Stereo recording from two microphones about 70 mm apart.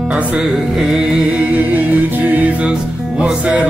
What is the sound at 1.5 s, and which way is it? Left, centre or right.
Music, right.